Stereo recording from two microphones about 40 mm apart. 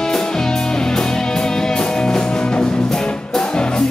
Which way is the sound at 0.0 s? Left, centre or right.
Centre.